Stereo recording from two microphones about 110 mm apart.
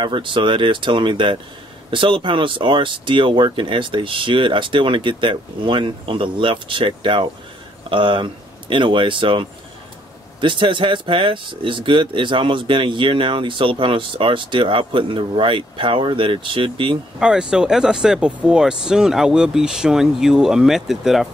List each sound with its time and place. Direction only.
0.0 s speech: 50° right (ahead or behind)
17.2 s speech: 5° right (ahead or behind)